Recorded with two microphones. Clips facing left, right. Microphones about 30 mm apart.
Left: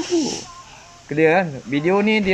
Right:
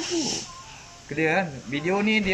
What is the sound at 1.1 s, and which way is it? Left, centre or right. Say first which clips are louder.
Speech: left 8 dB; left.